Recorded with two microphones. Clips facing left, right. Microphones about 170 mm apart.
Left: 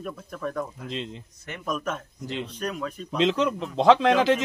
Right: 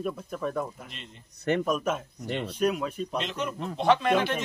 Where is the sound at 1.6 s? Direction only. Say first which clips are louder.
Right 3 dB; 10° right (ahead or behind).